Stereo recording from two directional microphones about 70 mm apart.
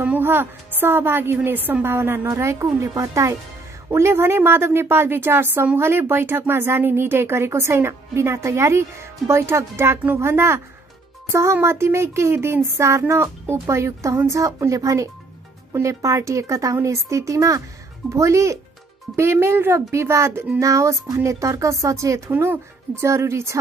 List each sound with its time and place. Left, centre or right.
0.0 s speech: right
3.9 s speech: right
11.6 s speech: right
22.3 s speech: right